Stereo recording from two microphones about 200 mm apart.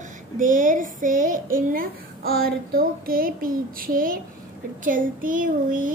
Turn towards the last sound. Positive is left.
turn(degrees=-40)  # may be behind; listen again after turning